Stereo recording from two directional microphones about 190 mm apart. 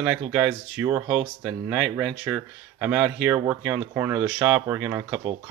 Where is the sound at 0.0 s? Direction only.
5° right (ahead or behind).